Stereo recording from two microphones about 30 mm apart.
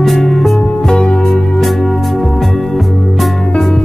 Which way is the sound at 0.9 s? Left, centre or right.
Left.